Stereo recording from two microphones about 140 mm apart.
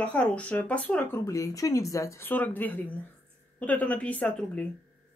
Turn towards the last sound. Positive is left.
turn(degrees=10)  # may be behind; listen again after turning